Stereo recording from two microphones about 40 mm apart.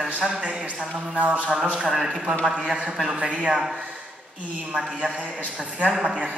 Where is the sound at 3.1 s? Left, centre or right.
Right.